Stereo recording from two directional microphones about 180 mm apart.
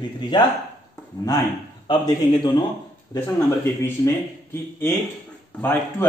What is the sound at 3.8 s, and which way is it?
Speech, 15° left (ahead or behind).